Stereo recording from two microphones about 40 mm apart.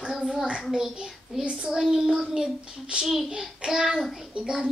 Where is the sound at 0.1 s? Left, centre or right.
Centre.